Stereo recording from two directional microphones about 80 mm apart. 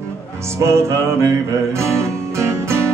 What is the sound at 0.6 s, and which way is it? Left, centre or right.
Music, right.